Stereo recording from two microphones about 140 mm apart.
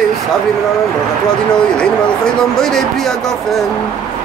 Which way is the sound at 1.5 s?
5° left (ahead or behind).